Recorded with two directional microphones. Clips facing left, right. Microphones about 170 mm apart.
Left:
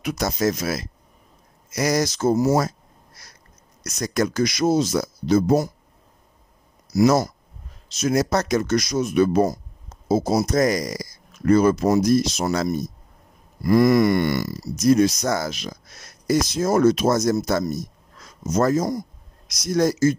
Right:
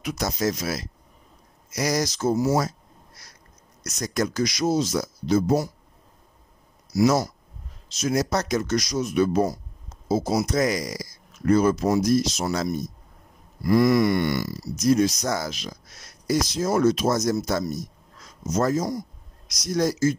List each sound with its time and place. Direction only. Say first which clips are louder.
0.0 s speech: left 3 dB; 60° left (ahead or behind)
3.8 s speech: left 3 dB; 65° left (ahead or behind)
6.9 s speech: left 3 dB; 50° left (ahead or behind)
11.4 s speech: left 3 dB; 65° left (ahead or behind)